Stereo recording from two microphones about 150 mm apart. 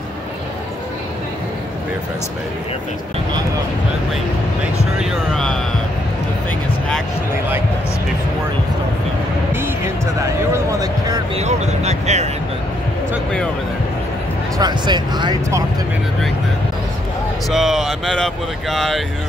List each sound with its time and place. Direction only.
4.9 s speech: centre (ahead or behind)
10.2 s speech: 20° right (ahead or behind)
11.3 s speech: 50° right (ahead or behind)
14.6 s speech: 30° right (ahead or behind)
17.5 s speech: centre (ahead or behind)